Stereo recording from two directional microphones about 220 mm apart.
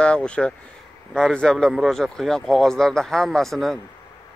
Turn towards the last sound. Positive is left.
turn(degrees=0)  # may be behind; listen again after turning